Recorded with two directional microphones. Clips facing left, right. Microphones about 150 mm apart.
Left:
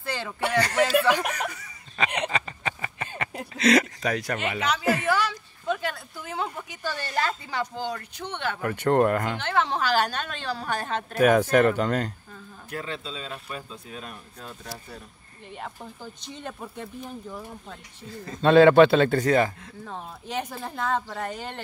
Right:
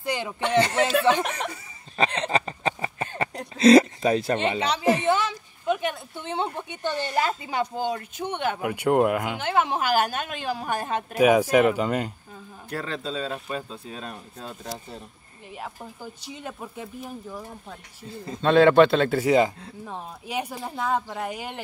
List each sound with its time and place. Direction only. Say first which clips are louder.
0.0 s a sound: right 3 dB; 15° right (ahead or behind)
0.5 s speech: right 1 dB; 25° right (ahead or behind)
1.5 s laughter: right 3 dB; 30° right (ahead or behind)
2.2 s a sound: right 4 dB; 35° right (ahead or behind)
3.5 s a woman's voice: right 6 dB; 30° right (ahead or behind); by 12.1 s 10° right (ahead or behind)
12.6 s speech: right 3 dB; 40° right (ahead or behind)
13.5 s speech: right 5 dB; 30° right (ahead or behind)
15.5 s speech: right 1 dB; 5° right (ahead or behind)
18.1 s speech: right 2 dB; 25° right (ahead or behind)
18.4 s speech: left 1 dB; 5° left (ahead or behind)